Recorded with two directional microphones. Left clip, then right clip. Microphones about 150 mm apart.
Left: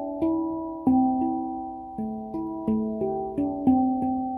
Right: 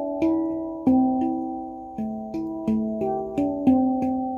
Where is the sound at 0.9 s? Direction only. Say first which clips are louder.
Right 1 dB; 10° right (ahead or behind).